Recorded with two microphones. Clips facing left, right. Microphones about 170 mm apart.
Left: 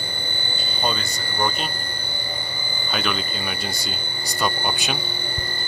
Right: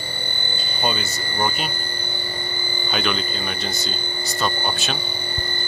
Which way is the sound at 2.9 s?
Centre (ahead or behind).